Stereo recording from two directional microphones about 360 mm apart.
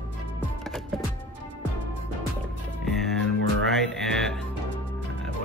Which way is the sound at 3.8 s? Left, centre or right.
Centre.